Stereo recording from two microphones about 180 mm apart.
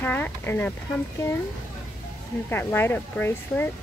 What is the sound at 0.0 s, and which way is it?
Speech, 10° left (ahead or behind).